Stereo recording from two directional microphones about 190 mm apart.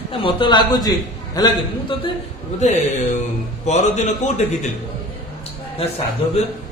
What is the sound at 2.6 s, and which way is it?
A man's voice, 35° left (ahead or behind).